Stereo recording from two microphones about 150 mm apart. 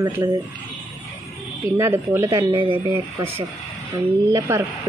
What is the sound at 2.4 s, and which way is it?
Speech, 30° right (ahead or behind).